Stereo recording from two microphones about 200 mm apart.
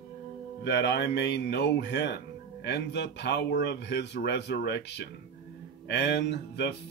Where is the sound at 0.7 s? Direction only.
60° left (ahead or behind).